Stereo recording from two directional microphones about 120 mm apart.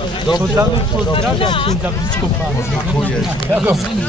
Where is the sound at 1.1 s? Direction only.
50° left (ahead or behind).